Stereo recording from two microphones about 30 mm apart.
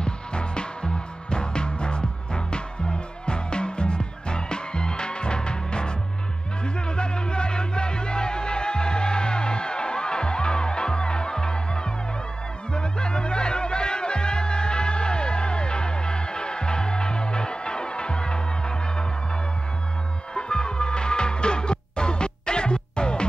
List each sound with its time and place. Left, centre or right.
0.0 s music: left
20.3 s music: left